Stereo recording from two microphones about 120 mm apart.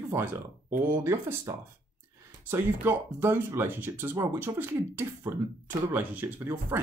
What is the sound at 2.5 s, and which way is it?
Speech, 20° right (ahead or behind).